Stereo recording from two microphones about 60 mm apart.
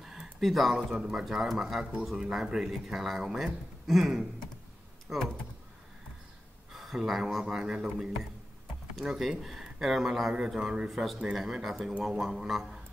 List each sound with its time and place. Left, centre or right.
0.0 s speech: centre
6.7 s speech: centre
10.9 s speech: centre